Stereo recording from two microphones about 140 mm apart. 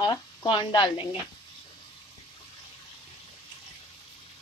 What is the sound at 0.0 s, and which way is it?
Speech, 30° left (ahead or behind).